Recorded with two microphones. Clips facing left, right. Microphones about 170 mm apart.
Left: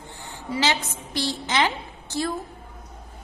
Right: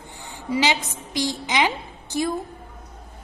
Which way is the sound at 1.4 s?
15° right (ahead or behind).